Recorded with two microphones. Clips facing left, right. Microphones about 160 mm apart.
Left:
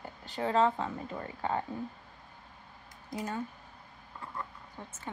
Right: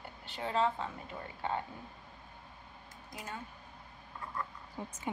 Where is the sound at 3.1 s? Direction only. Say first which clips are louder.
Left 8 dB; 35° left (ahead or behind).